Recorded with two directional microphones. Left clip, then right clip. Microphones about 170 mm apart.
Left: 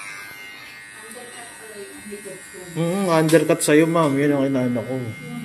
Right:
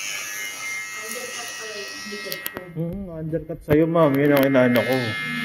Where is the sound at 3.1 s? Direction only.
10° left (ahead or behind); by 5.1 s 10° right (ahead or behind).